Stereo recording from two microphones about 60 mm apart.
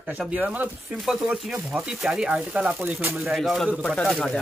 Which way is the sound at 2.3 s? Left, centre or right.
Right.